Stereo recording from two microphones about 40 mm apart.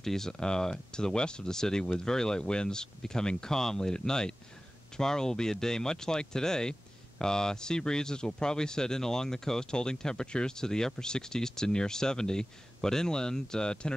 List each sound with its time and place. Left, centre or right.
0.0 s speech: centre